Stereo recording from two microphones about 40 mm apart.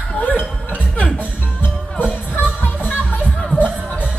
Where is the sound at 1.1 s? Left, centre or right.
Right.